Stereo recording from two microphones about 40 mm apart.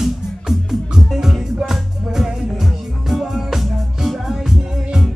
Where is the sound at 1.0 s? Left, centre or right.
Centre.